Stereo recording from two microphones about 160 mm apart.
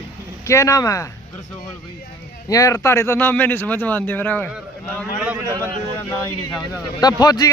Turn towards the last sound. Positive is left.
turn(degrees=25)  # may be behind; listen again after turning